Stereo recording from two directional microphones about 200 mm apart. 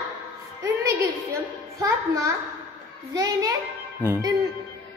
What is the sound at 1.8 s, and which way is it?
A child's voice, 15° right (ahead or behind).